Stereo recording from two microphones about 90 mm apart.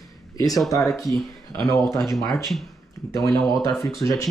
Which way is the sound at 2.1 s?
40° left (ahead or behind).